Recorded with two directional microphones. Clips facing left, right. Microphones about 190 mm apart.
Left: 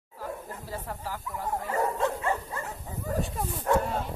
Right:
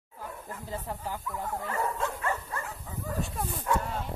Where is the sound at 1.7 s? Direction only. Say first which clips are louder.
Left 5 dB; 20° left (ahead or behind).